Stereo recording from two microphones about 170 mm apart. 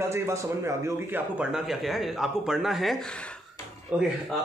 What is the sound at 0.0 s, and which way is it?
A man's voice, 15° right (ahead or behind).